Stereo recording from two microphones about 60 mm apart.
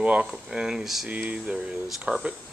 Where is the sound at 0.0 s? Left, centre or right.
Centre.